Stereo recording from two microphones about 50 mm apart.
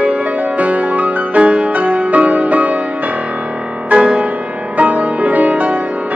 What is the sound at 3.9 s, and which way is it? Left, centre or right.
Music, right.